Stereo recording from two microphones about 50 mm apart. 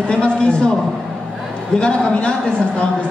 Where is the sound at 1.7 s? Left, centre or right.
Left.